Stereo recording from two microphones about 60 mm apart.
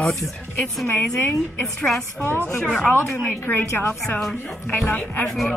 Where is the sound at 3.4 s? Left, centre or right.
Left.